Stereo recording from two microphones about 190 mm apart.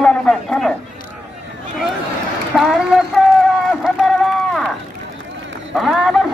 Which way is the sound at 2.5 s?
Centre (ahead or behind).